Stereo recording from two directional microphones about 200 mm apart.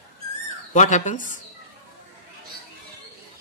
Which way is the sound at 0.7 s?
35° left (ahead or behind).